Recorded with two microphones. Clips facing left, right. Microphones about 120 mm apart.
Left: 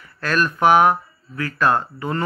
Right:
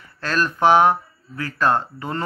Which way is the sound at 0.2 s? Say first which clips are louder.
Left 1 dB; 30° right (ahead or behind).